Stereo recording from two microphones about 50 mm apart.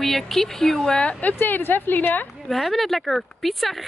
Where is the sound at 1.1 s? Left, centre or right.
Left.